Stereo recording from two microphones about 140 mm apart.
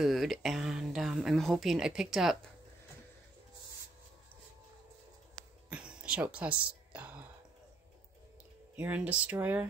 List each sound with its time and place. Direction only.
0.0 s speech: centre (ahead or behind)
5.7 s a sound: 5° right (ahead or behind)
8.7 s speech: 10° right (ahead or behind)